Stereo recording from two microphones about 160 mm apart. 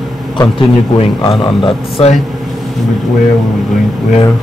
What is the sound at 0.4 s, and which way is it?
A man's voice, 30° left (ahead or behind).